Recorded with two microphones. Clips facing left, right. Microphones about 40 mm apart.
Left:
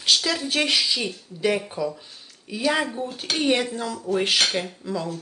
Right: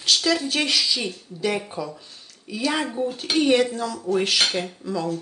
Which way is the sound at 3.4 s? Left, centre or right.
Centre.